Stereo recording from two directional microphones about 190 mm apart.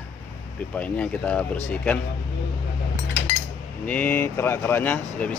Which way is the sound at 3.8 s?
10° left (ahead or behind).